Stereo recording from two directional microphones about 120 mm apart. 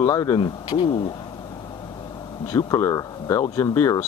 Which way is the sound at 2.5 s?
30° left (ahead or behind).